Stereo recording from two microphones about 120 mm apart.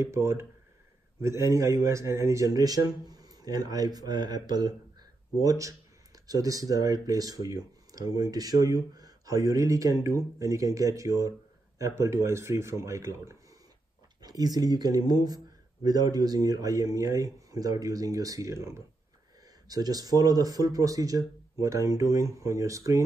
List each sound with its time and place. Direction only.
0.0 s speech: 25° right (ahead or behind)